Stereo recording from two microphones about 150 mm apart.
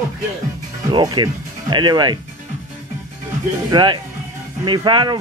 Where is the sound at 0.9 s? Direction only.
30° right (ahead or behind).